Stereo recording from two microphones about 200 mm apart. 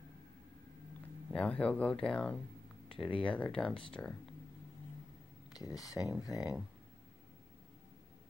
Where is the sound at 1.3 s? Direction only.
5° left (ahead or behind).